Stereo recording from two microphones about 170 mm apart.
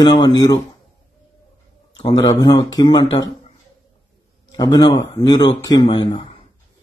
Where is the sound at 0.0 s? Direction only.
25° left (ahead or behind).